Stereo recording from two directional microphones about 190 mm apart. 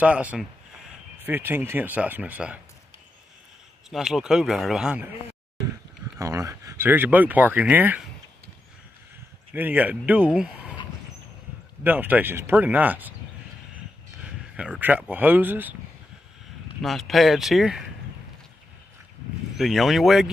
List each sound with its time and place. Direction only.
0.0 s speech: 5° right (ahead or behind)
3.9 s speech: 5° right (ahead or behind)
6.1 s speech: 15° right (ahead or behind)
9.5 s speech: 10° right (ahead or behind)
11.8 s speech: 10° right (ahead or behind)
14.2 s speech: 5° right (ahead or behind)
17.1 s speech: centre (ahead or behind)
19.5 s speech: centre (ahead or behind)